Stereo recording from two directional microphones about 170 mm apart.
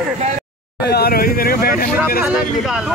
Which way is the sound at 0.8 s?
65° left (ahead or behind).